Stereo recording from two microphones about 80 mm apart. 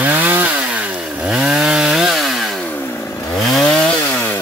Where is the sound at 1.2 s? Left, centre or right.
Centre.